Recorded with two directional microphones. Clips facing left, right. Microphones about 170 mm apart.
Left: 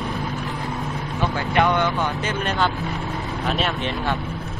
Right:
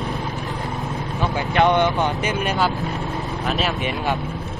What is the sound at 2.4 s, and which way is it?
Speech, 10° right (ahead or behind).